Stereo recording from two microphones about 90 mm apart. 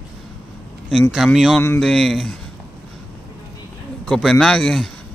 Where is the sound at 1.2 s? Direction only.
5° right (ahead or behind).